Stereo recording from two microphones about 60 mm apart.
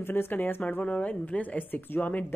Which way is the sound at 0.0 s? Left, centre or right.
Left.